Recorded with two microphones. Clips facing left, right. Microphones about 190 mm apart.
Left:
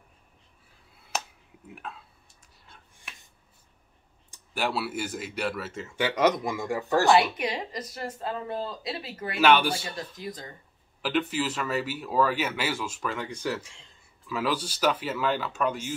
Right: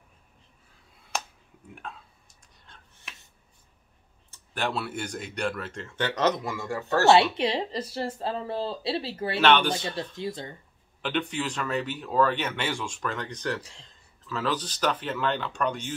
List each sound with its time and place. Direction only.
1.8 s a sound: centre (ahead or behind)
2.6 s finger snapping: 5° left (ahead or behind)
4.3 s speech: 5° left (ahead or behind)
7.1 s speech: 30° right (ahead or behind)
9.4 s speech: 10° left (ahead or behind)
10.1 s speech: 25° right (ahead or behind)
11.0 s speech: 5° left (ahead or behind)
13.6 s speech: 35° right (ahead or behind)
14.2 s speech: 10° left (ahead or behind)